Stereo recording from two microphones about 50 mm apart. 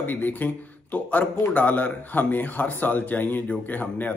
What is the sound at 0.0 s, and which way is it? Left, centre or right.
A man's voice, left.